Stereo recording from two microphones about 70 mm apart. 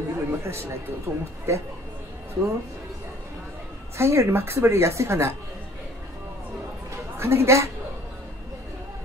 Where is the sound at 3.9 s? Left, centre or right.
Right.